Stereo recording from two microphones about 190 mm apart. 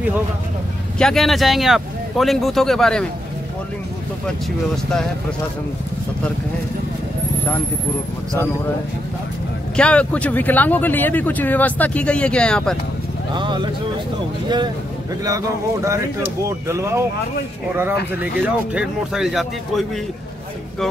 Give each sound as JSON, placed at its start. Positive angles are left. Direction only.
{"t": 0.9, "sound": "speech", "side_deg": 0}
{"t": 9.8, "sound": "speech", "side_deg": 5}
{"t": 13.3, "sound": "speech", "side_deg": -25}
{"t": 15.2, "sound": "speech", "side_deg": -15}
{"t": 18.2, "sound": "speech", "side_deg": -5}